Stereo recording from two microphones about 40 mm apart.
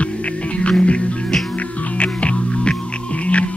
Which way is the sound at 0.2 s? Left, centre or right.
Left.